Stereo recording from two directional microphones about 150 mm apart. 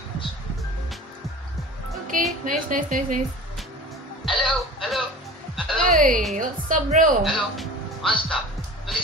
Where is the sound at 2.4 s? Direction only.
60° right (ahead or behind).